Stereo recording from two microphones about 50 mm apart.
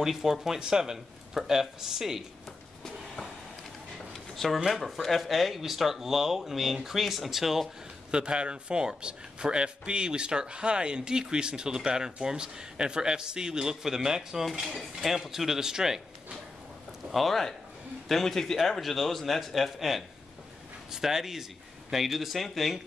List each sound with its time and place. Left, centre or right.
0.0 s speech: centre
4.1 s a sound: centre
4.6 s speech: centre
8.1 s speech: right
17.1 s speech: centre